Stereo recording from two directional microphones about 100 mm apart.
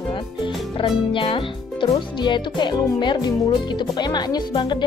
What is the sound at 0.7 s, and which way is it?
Speech, 60° left (ahead or behind).